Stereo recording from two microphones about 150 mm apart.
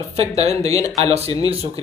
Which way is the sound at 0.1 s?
45° right (ahead or behind).